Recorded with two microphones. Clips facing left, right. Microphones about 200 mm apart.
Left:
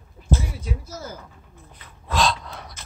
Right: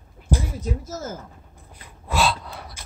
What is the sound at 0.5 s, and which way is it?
Speech, 45° right (ahead or behind).